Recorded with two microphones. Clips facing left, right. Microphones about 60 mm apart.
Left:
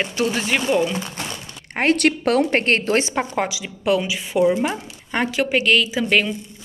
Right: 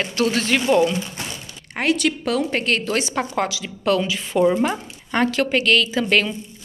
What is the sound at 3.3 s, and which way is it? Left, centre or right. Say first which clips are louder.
Speech: even; centre.